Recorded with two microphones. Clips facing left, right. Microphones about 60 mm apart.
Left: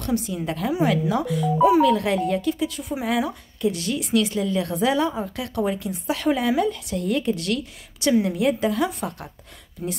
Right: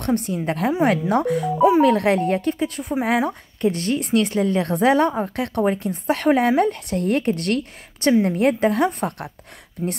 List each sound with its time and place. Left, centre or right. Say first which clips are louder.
0.0 s speech: right 3 dB; right